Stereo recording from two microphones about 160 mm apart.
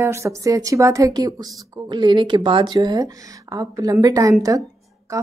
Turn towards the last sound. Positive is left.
turn(degrees=-20)  # may be behind; listen again after turning